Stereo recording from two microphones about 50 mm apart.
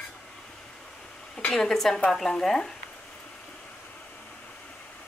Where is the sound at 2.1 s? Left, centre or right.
Centre.